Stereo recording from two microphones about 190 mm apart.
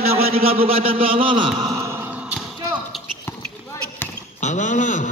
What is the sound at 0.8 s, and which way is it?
A man's voice, 30° right (ahead or behind).